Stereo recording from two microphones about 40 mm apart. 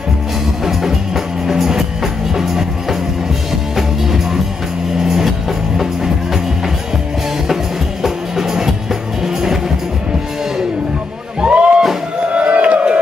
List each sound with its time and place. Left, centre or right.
0.7 s music: centre
8.0 s music: centre
11.4 s music: right
12.3 s run: right